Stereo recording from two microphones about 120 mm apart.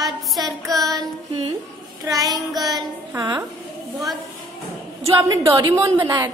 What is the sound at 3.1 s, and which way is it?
Child singing, 30° right (ahead or behind).